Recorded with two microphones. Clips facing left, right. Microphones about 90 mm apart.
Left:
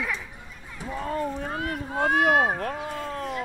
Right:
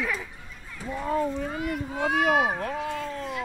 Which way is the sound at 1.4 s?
50° left (ahead or behind).